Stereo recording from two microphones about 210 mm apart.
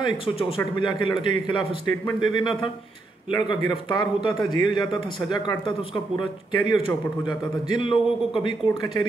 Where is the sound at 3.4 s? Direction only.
20° left (ahead or behind).